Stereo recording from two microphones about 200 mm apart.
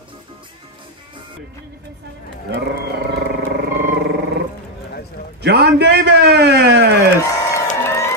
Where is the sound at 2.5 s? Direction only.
55° right (ahead or behind).